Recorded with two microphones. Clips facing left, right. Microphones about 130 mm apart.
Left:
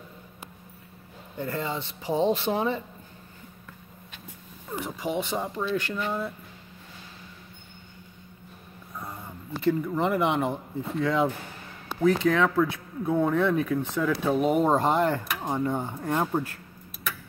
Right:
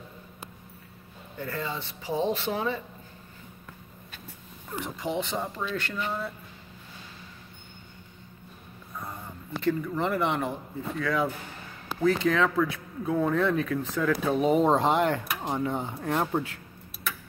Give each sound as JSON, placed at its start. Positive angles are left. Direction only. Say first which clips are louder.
{"t": 1.4, "sound": "speech", "louder": "left 3 dB", "side_deg": 20}
{"t": 4.8, "sound": "speech", "louder": "left 1 dB", "side_deg": 5}
{"t": 8.9, "sound": "speech", "louder": "even", "side_deg": 10}
{"t": 12.0, "sound": "speech", "louder": "left 2 dB", "side_deg": 5}